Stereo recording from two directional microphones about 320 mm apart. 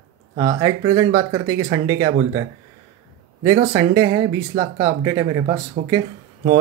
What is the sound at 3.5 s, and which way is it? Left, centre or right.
Speech, centre.